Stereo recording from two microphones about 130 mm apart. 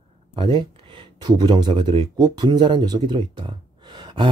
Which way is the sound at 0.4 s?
40° right (ahead or behind).